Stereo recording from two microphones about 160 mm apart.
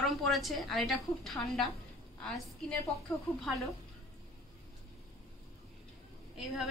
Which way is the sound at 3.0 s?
Centre (ahead or behind).